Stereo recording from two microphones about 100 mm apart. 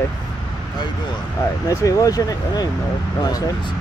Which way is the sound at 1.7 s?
35° left (ahead or behind).